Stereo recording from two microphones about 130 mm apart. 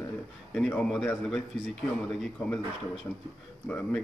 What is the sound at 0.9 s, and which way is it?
Speech, 5° left (ahead or behind).